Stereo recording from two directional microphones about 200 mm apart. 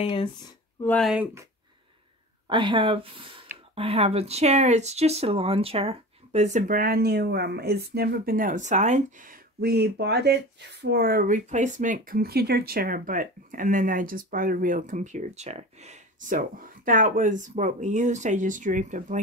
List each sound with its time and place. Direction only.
0.0 s speech: 25° left (ahead or behind)
0.8 s speech: 5° left (ahead or behind)
1.1 s speech: 10° right (ahead or behind)
2.5 s speech: 25° right (ahead or behind)